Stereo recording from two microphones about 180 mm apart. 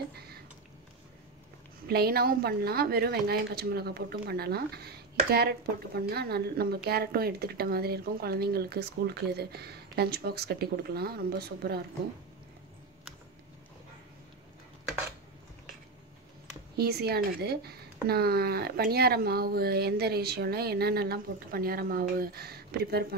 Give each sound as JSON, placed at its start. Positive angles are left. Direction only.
{"t": 1.9, "sound": "speech", "side_deg": -60}
{"t": 16.7, "sound": "speech", "side_deg": -60}